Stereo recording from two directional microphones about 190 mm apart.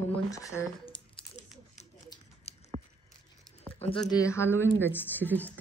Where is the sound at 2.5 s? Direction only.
35° left (ahead or behind).